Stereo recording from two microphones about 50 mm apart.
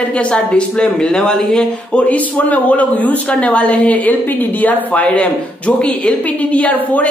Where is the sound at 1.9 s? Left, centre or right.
Left.